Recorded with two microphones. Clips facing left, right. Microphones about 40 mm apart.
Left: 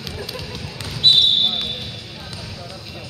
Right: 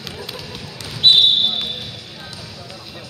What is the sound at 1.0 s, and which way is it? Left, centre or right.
Basketball bounce, right.